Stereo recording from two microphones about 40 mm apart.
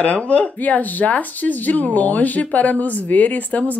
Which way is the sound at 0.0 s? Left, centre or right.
Left.